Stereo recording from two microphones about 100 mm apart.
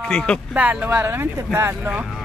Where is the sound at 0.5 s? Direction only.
15° right (ahead or behind).